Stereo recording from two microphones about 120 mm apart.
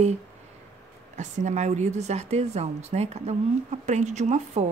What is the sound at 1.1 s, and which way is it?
Speech, 85° right.